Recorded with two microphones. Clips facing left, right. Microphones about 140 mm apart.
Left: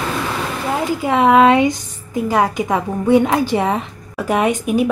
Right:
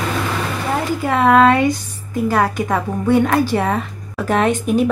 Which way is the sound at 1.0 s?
15° left (ahead or behind).